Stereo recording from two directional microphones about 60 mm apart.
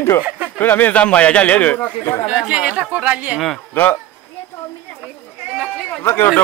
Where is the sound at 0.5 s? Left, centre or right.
Left.